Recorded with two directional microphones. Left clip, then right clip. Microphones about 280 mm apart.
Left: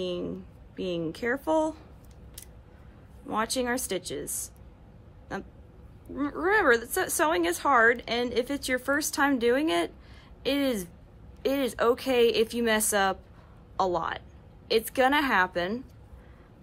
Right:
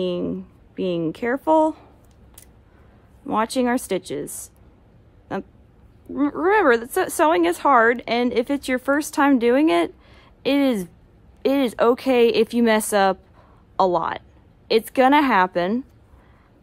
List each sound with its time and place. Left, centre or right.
0.0 s speech: right
3.3 s speech: right